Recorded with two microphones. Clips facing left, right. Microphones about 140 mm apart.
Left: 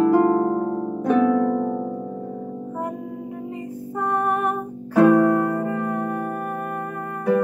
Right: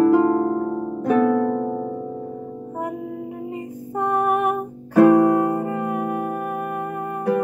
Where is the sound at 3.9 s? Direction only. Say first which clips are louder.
Right 3 dB; 15° right (ahead or behind).